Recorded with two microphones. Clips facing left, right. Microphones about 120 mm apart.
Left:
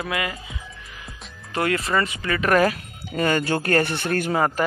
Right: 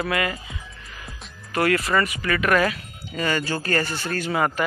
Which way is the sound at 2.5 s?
45° left (ahead or behind).